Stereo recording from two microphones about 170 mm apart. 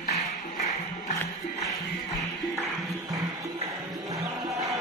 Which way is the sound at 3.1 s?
20° right (ahead or behind).